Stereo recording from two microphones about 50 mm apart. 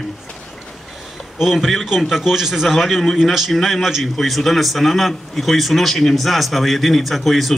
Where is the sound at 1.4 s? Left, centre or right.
Centre.